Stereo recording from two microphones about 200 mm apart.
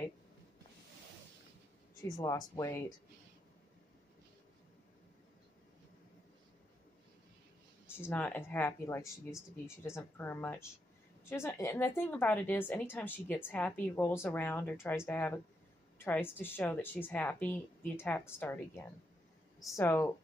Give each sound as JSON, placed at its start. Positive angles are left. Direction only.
{"t": 2.1, "sound": "a woman's voice", "side_deg": 15}
{"t": 8.0, "sound": "a woman's voice", "side_deg": 10}